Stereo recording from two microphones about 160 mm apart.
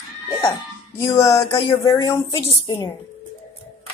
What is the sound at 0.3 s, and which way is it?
Music, 30° left (ahead or behind).